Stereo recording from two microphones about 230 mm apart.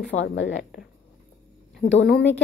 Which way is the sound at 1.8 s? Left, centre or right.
Left.